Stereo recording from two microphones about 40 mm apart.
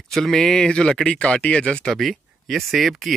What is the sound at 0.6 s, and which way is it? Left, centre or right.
Speech, left.